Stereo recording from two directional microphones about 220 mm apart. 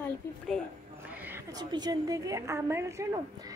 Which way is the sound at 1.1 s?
10° right (ahead or behind).